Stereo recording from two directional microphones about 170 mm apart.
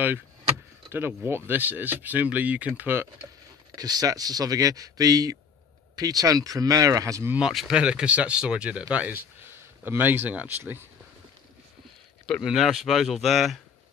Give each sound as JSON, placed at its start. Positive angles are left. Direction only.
{"t": 0.9, "sound": "speech", "side_deg": -10}
{"t": 3.7, "sound": "speech", "side_deg": -20}
{"t": 7.3, "sound": "speech", "side_deg": -5}
{"t": 12.3, "sound": "speech", "side_deg": 0}